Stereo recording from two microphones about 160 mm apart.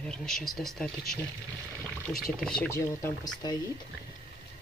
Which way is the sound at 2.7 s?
20° left (ahead or behind).